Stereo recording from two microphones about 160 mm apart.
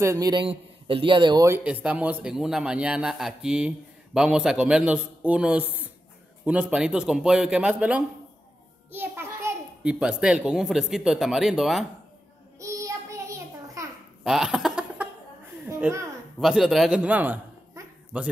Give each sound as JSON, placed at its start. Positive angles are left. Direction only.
{"t": 0.0, "sound": "a man's voice", "side_deg": -20}
{"t": 12.5, "sound": "child singing", "side_deg": -20}
{"t": 14.2, "sound": "a sound", "side_deg": -5}
{"t": 15.8, "sound": "a man's voice", "side_deg": -15}
{"t": 16.3, "sound": "a man's voice", "side_deg": -5}